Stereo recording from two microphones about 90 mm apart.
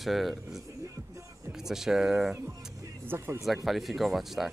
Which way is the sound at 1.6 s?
5° right (ahead or behind).